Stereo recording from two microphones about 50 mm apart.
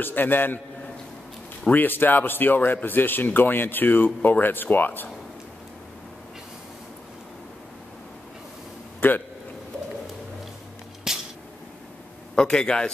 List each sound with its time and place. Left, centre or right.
0.0 s speech: left
1.7 s speech: left
9.0 s a man's voice: left
11.1 s a sound: centre
12.4 s speech: centre